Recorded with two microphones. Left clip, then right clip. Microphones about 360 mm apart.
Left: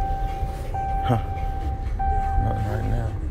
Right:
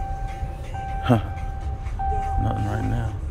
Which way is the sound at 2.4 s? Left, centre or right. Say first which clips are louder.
Even; right.